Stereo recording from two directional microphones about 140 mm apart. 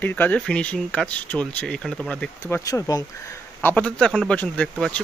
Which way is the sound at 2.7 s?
25° left (ahead or behind).